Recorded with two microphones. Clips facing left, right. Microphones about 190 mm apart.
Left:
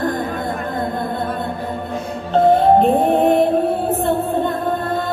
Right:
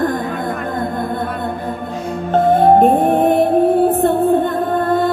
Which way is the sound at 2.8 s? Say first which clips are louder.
Right 2 dB; 45° right (ahead or behind).